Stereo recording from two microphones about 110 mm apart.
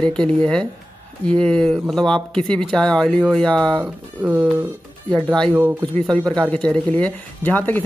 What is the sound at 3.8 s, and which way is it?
Speech, 15° right (ahead or behind).